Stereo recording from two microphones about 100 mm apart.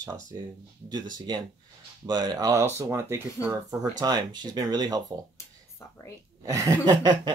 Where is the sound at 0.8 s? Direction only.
45° right (ahead or behind).